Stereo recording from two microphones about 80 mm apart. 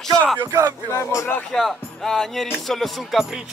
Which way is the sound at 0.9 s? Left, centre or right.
Left.